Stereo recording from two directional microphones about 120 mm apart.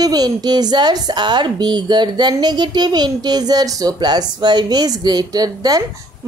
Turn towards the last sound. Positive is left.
turn(degrees=-35)  # may be behind; listen again after turning